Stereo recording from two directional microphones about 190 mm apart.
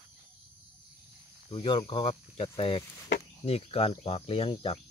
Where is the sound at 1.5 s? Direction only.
30° left (ahead or behind).